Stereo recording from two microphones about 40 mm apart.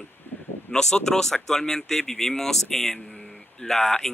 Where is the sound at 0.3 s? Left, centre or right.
Left.